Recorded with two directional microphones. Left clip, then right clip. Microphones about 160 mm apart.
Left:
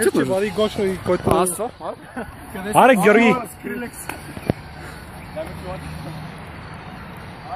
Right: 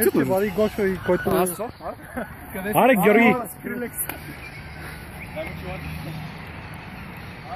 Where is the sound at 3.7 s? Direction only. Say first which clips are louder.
Left 2 dB; 10° right (ahead or behind).